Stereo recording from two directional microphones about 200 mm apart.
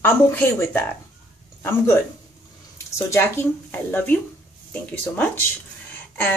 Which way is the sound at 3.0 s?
10° left (ahead or behind).